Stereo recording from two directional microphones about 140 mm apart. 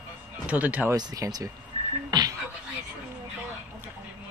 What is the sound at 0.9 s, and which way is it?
Speech, 25° right (ahead or behind).